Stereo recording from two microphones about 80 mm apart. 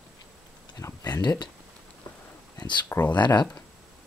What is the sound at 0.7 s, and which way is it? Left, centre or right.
Speech, left.